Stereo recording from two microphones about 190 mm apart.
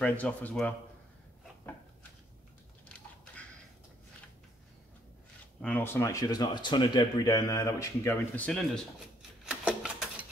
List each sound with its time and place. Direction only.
0.0 s speech: 10° left (ahead or behind)
5.6 s speech: 10° left (ahead or behind)
9.5 s a sound: 5° right (ahead or behind)